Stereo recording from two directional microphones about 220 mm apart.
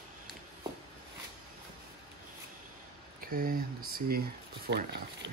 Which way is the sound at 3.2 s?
40° right (ahead or behind).